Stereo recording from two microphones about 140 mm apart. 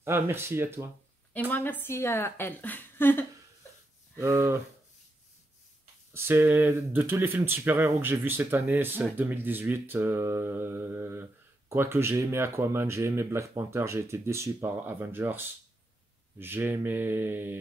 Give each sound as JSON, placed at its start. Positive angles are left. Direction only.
{"t": 0.0, "sound": "speech", "side_deg": -15}
{"t": 1.5, "sound": "a woman's voice", "side_deg": 15}
{"t": 4.2, "sound": "speech", "side_deg": -20}
{"t": 6.1, "sound": "speech", "side_deg": -15}